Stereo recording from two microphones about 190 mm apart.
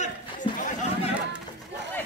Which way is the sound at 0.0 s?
40° left (ahead or behind).